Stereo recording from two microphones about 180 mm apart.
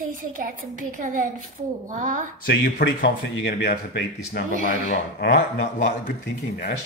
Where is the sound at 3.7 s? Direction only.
55° left (ahead or behind).